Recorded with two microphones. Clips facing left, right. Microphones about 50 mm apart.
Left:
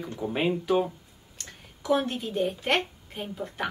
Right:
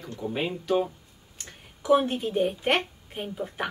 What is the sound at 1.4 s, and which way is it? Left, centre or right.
A woman's voice, centre.